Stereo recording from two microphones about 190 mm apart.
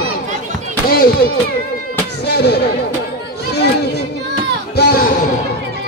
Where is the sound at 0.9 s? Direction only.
50° left (ahead or behind).